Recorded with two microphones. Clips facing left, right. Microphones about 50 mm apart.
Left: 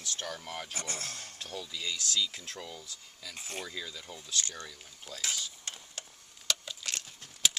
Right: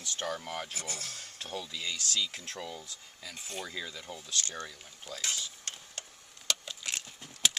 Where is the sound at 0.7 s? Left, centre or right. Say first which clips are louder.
Left 2 dB; left.